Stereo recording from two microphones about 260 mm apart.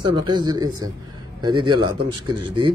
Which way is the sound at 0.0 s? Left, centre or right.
Centre.